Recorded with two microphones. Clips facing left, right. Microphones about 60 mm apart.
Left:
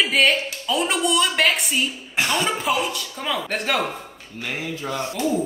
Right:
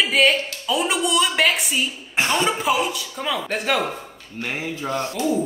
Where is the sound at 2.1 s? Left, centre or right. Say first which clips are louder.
Right 2 dB; right.